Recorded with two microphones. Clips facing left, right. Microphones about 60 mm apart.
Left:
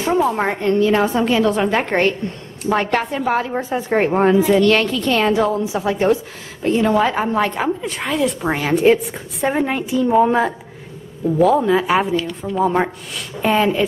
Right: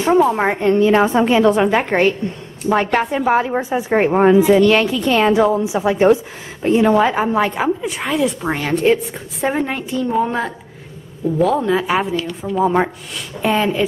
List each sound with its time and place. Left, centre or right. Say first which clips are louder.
0.2 s a woman's voice: right 3 dB; centre
1.6 s a woman's voice: right 2 dB; centre
6.9 s a woman's voice: right 2 dB; centre